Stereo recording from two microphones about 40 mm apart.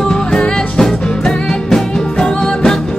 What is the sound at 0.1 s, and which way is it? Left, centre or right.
Music, centre.